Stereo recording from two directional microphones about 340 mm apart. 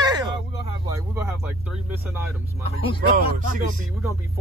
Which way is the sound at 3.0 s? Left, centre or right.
Right.